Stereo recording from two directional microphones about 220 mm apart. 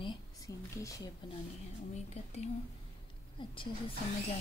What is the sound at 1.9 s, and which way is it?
A woman's voice, 30° left (ahead or behind).